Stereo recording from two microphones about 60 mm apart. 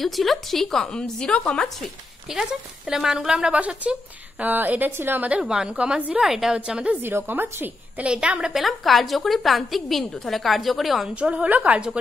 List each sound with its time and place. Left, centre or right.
0.0 s a woman's voice: centre
1.8 s a woman's voice: centre
3.5 s a woman's voice: right
5.4 s a woman's voice: centre
6.2 s a woman's voice: centre
6.5 s a woman's voice: centre
7.0 s a woman's voice: right
8.0 s a woman's voice: centre
8.5 s a woman's voice: centre
11.1 s a woman's voice: right